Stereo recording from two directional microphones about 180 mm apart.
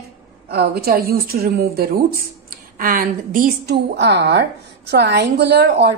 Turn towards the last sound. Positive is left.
turn(degrees=-65)  # may be behind; listen again after turning